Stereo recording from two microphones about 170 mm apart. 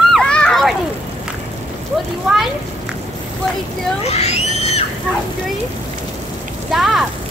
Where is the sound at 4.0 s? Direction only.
40° left (ahead or behind).